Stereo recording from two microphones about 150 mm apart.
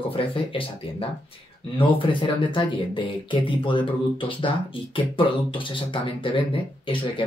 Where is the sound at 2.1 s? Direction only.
35° left (ahead or behind).